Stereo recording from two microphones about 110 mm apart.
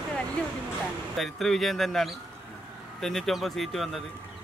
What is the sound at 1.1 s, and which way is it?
Speech, centre (ahead or behind).